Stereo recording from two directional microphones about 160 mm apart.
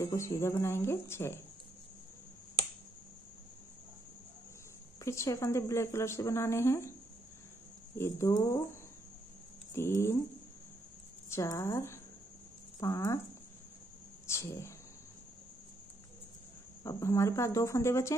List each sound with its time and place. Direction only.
0.0 s speech: 20° left (ahead or behind)
5.0 s speech: 20° left (ahead or behind)
8.0 s speech: 20° left (ahead or behind)
9.8 s speech: 15° left (ahead or behind)
11.2 s speech: 20° left (ahead or behind)
14.2 s speech: 20° left (ahead or behind)
16.8 s speech: 20° left (ahead or behind)